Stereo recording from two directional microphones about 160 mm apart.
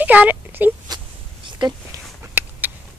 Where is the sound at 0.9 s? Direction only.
25° right (ahead or behind).